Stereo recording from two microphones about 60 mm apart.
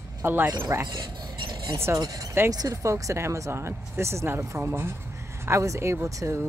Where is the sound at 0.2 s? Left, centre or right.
Right.